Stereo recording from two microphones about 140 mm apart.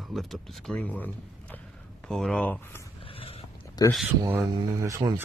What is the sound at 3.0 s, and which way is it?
Dog, 40° left (ahead or behind).